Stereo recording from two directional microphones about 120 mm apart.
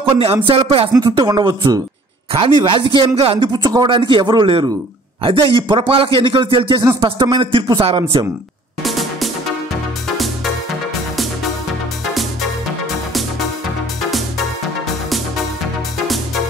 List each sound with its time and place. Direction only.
0.1 s a man's voice: 50° right (ahead or behind)
0.9 s speech: 35° right (ahead or behind)
2.6 s a man's voice: 45° right (ahead or behind)
8.8 s music: centre (ahead or behind)